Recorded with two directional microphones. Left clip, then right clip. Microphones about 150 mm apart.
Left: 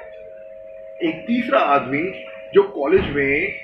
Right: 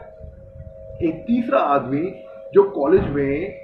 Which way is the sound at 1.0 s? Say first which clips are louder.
Even; centre (ahead or behind).